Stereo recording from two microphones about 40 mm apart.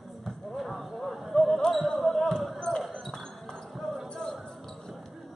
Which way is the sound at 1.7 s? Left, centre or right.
Centre.